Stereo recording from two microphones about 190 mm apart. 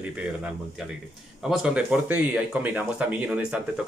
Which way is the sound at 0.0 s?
5° right (ahead or behind).